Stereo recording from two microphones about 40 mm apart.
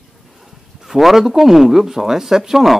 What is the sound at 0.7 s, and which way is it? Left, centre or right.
Speech, centre.